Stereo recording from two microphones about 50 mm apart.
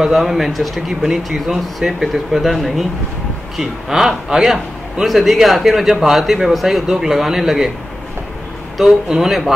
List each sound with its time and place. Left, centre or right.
0.0 s speech: centre
8.7 s speech: centre